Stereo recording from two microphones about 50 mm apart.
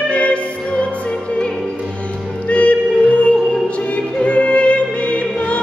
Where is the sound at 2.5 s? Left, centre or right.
Left.